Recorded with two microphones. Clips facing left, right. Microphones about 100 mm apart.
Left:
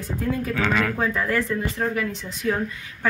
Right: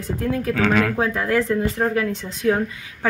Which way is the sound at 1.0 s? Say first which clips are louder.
Right 3 dB; 70° right (ahead or behind).